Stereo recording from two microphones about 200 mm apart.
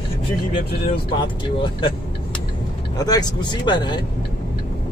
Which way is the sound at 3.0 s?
20° left (ahead or behind).